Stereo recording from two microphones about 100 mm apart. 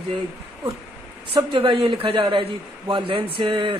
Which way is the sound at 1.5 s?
55° right (ahead or behind).